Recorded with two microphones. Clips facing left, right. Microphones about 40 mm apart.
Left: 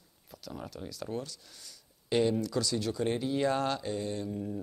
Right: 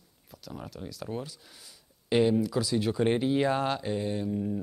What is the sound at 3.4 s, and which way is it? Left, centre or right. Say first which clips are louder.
Speech: right 2 dB; centre.